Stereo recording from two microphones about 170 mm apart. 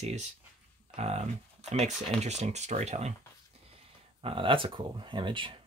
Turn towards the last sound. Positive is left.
turn(degrees=-30)  # may be behind; listen again after turning